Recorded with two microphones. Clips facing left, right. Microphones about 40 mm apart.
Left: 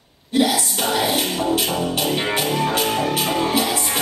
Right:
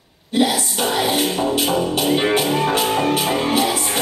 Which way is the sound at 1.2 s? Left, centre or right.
Right.